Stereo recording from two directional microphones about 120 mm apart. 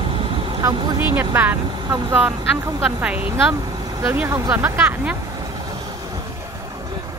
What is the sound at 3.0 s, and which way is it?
Speech, 10° right (ahead or behind).